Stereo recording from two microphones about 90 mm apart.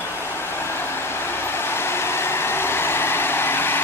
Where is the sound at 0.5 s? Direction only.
25° left (ahead or behind).